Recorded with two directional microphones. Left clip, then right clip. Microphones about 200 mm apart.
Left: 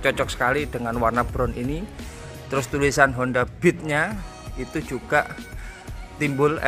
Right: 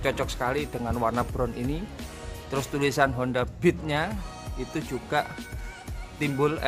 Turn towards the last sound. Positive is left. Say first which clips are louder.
# left 5 dB
turn(degrees=0)  # may be behind; listen again after turning